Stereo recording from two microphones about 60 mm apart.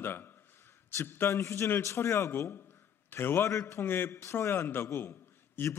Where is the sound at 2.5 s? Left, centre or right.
Left.